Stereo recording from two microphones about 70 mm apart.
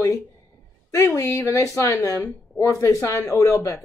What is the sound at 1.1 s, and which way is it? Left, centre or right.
Speech, left.